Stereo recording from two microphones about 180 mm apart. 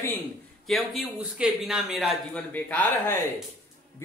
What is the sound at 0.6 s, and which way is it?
A man's voice, centre (ahead or behind).